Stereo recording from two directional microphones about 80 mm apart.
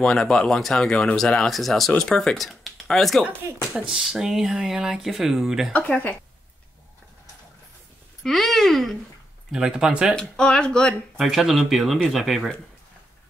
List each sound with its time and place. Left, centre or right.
0.0 s speech: centre
3.3 s speech: centre
5.7 s speech: centre
8.2 s speech: centre
9.5 s speech: centre
10.1 s speech: centre
11.2 s speech: centre